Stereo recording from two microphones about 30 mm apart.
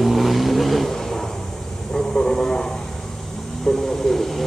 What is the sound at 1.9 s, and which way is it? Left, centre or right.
Vehicle, centre.